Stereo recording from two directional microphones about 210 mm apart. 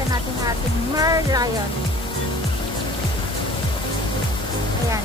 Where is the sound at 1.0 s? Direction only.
15° right (ahead or behind).